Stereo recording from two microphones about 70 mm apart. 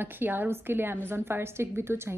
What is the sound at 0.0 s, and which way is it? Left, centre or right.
A woman's voice, right.